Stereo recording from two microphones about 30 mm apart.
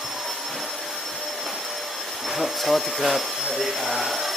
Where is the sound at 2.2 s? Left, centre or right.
Centre.